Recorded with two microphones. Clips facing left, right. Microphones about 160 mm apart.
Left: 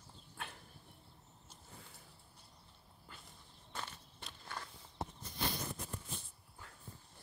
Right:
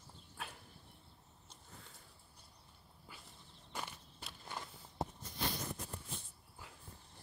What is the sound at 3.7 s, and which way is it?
Walk, 15° right (ahead or behind).